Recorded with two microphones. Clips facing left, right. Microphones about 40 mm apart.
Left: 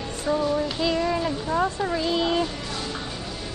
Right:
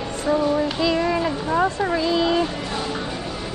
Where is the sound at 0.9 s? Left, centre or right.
Right.